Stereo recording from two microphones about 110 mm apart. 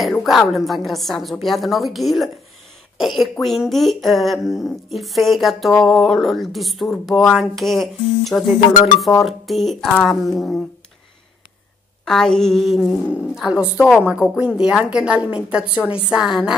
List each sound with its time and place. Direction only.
0.0 s speech: centre (ahead or behind)
12.0 s speech: 5° left (ahead or behind)
14.6 s speech: 5° right (ahead or behind)